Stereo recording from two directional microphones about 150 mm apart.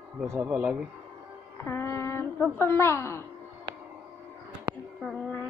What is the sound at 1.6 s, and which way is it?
Female singing, 15° left (ahead or behind).